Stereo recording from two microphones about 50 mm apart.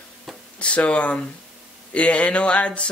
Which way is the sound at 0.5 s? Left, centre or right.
Left.